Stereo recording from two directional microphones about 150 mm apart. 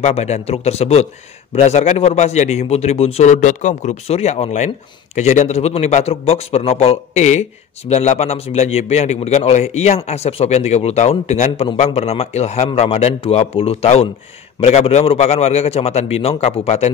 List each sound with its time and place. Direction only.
0.0 s a man's voice: 45° left (ahead or behind)